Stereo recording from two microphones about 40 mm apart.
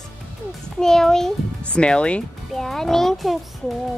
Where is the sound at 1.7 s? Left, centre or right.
Left.